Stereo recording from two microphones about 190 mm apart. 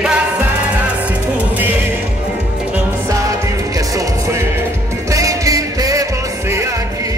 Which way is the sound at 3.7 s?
15° right (ahead or behind).